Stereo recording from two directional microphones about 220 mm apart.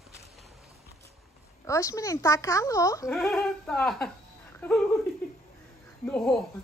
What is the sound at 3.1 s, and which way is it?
Speech, 5° left (ahead or behind).